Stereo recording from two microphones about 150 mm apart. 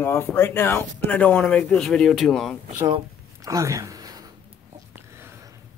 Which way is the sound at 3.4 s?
20° right (ahead or behind).